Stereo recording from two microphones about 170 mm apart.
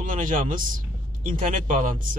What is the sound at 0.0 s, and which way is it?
Speech, 50° right (ahead or behind).